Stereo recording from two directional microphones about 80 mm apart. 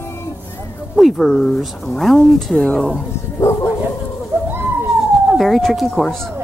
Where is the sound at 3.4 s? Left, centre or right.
Left.